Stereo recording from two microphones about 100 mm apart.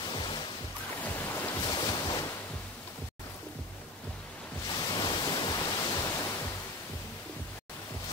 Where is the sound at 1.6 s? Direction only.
45° left (ahead or behind).